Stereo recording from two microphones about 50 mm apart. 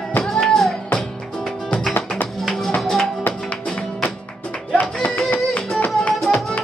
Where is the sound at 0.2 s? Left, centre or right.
Centre.